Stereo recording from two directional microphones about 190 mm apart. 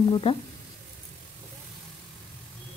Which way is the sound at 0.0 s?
25° left (ahead or behind).